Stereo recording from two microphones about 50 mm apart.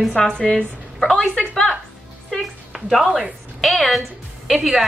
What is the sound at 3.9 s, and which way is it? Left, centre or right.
Speech, centre.